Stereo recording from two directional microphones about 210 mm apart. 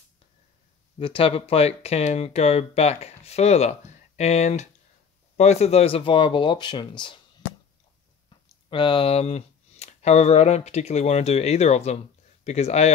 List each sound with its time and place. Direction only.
0.9 s speech: 25° left (ahead or behind)
8.6 s speech: 25° left (ahead or behind)